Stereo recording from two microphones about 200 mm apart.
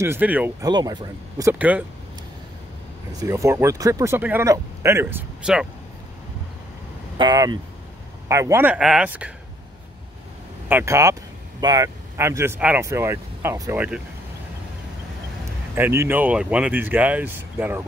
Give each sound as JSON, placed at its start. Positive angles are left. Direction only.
{"t": 0.0, "sound": "speech", "side_deg": -10}
{"t": 0.7, "sound": "speech", "side_deg": -20}
{"t": 3.2, "sound": "speech", "side_deg": -15}
{"t": 7.2, "sound": "speech", "side_deg": -20}
{"t": 10.7, "sound": "speech", "side_deg": -10}
{"t": 15.7, "sound": "speech", "side_deg": -15}